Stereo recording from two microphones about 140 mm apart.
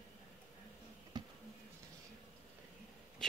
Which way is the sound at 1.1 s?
30° right (ahead or behind).